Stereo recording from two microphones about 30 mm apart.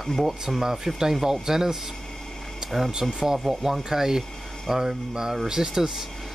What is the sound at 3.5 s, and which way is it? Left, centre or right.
Speech, centre.